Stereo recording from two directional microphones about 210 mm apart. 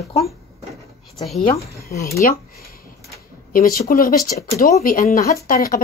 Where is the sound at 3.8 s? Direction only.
45° left (ahead or behind).